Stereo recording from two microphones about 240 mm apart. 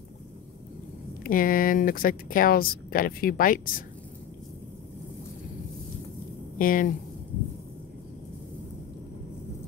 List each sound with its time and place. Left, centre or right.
1.2 s speech: left
6.6 s speech: left